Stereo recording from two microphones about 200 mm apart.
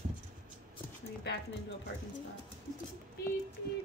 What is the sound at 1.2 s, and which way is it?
Speech, 55° left (ahead or behind).